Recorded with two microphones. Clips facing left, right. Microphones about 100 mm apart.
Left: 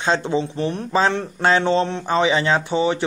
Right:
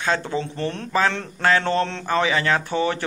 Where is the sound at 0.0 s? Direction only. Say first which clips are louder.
Left 3 dB; 20° left (ahead or behind).